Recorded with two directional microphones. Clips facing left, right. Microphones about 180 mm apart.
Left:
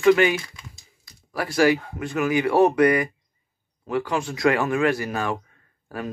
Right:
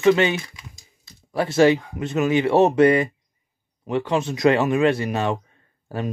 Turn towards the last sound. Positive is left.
turn(degrees=-25)  # may be behind; listen again after turning